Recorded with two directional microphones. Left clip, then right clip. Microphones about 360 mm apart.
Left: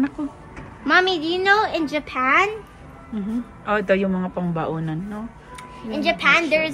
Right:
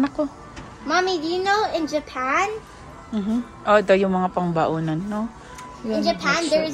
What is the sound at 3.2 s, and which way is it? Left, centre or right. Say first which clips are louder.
Speech: right 3 dB; centre.